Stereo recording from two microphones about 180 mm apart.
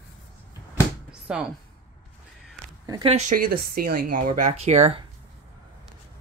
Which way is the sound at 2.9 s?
30° right (ahead or behind).